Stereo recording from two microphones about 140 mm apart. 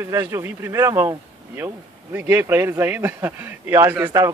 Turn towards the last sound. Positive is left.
turn(degrees=-20)  # may be behind; listen again after turning